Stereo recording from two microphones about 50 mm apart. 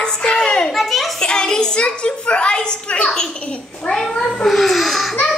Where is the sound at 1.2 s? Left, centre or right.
Centre.